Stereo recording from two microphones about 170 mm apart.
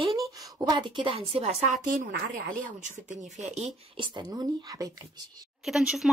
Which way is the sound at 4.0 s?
25° right (ahead or behind).